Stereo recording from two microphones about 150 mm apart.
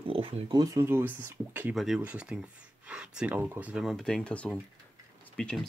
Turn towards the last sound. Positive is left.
turn(degrees=5)  # may be behind; listen again after turning